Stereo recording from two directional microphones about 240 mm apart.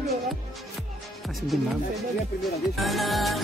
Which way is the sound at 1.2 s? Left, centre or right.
Centre.